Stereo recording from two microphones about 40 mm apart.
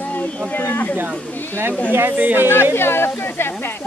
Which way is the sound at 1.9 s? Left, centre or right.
Right.